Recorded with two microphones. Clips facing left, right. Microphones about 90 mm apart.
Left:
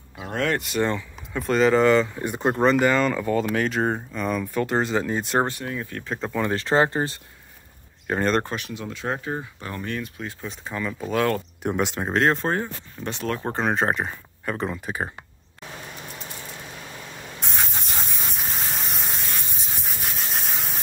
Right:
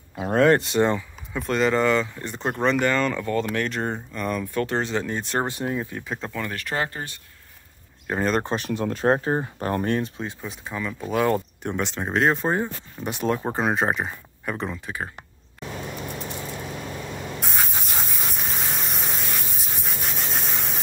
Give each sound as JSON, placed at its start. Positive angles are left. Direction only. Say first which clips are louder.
{"t": 0.2, "sound": "speech", "louder": "right 7 dB", "side_deg": -40}
{"t": 1.3, "sound": "speech", "louder": "left 3 dB", "side_deg": 0}
{"t": 5.5, "sound": "speech", "louder": "right 3 dB", "side_deg": -25}
{"t": 6.4, "sound": "speech", "louder": "left 9 dB", "side_deg": 25}
{"t": 8.1, "sound": "speech", "louder": "left 1 dB", "side_deg": -5}
{"t": 8.5, "sound": "speech", "louder": "right 7 dB", "side_deg": -40}
{"t": 10.4, "sound": "speech", "louder": "left 4 dB", "side_deg": -5}
{"t": 11.6, "sound": "speech", "louder": "left 3 dB", "side_deg": 5}
{"t": 17.4, "sound": "spray", "louder": "left 2 dB", "side_deg": 0}